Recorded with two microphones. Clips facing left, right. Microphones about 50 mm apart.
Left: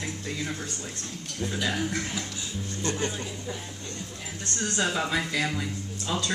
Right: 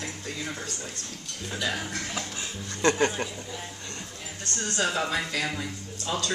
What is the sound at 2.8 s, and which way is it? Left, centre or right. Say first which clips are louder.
Speech: right 7 dB; right.